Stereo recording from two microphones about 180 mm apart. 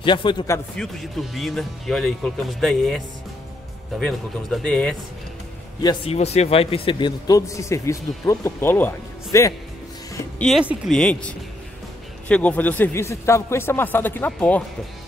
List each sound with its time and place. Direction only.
0.0 s a man's voice: 25° left (ahead or behind)
0.8 s speech: 5° left (ahead or behind)
4.0 s speech: 5° left (ahead or behind)
5.8 s a man's voice: 25° left (ahead or behind)
6.1 s a man's voice: 35° left (ahead or behind); by 9.5 s 15° left (ahead or behind)
10.4 s speech: 5° right (ahead or behind)